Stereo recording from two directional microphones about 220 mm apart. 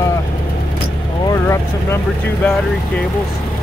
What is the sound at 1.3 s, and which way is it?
Speech, 15° left (ahead or behind).